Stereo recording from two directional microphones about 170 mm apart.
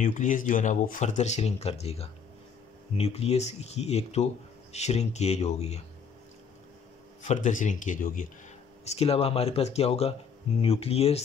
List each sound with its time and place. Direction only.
0.0 s speech: 50° left (ahead or behind)
7.2 s speech: 45° left (ahead or behind)
8.8 s speech: 35° left (ahead or behind)